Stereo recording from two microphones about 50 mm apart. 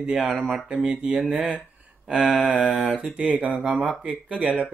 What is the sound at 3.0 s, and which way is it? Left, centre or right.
Speech, centre.